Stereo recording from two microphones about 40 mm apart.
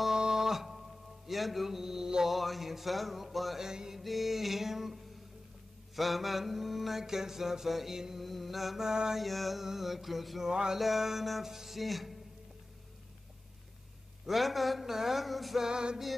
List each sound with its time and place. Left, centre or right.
0.1 s music: centre
2.2 s mantra: centre
3.6 s mantra: centre
4.0 s music: centre
5.9 s mantra: centre
8.8 s mantra: centre
9.2 s mantra: centre
10.5 s mantra: centre
10.8 s mantra: centre
14.2 s mantra: centre
15.7 s music: centre